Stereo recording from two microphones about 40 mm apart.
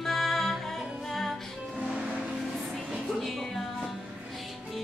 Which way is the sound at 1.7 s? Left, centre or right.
Right.